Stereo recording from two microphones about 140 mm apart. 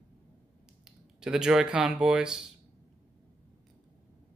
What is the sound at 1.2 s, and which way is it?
Speech, 5° right (ahead or behind).